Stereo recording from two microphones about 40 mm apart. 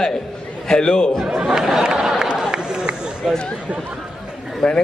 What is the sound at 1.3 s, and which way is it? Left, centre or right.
Chatter, centre.